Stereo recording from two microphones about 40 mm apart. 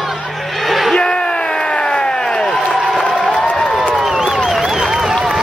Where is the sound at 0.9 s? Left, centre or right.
Left.